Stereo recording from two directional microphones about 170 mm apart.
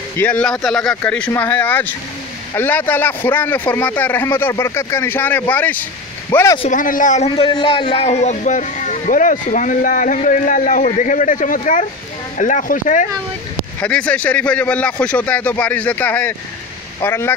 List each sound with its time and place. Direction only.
0.2 s a man's voice: 10° left (ahead or behind)
6.7 s a man's voice: 50° left (ahead or behind)
7.2 s a man's voice: 30° left (ahead or behind); by 13.0 s 50° left (ahead or behind)
13.7 s a man's voice: 5° left (ahead or behind)